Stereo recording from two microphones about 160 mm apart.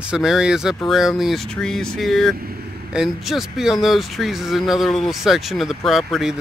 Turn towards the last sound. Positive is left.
turn(degrees=0)  # may be behind; listen again after turning